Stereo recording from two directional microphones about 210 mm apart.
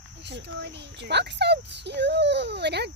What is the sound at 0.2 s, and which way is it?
Speech, 55° right (ahead or behind).